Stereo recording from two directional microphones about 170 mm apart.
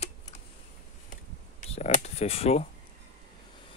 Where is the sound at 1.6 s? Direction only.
40° left (ahead or behind).